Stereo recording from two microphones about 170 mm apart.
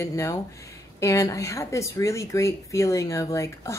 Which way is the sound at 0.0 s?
20° left (ahead or behind).